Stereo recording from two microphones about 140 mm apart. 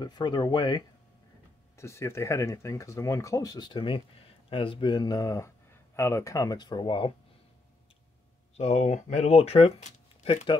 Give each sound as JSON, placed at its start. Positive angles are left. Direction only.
{"t": 0.0, "sound": "speech", "side_deg": 30}
{"t": 1.8, "sound": "speech", "side_deg": 20}
{"t": 8.5, "sound": "speech", "side_deg": 50}
{"t": 10.2, "sound": "speech", "side_deg": 40}